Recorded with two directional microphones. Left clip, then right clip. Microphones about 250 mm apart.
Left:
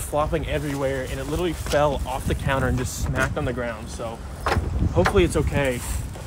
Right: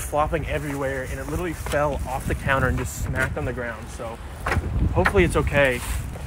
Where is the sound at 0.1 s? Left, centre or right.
Centre.